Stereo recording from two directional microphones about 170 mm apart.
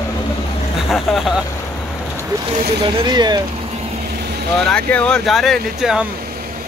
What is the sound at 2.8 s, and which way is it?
Speech, 30° right (ahead or behind).